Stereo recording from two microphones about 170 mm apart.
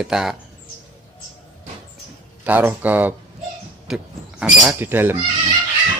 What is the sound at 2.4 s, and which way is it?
A man's voice, 10° right (ahead or behind).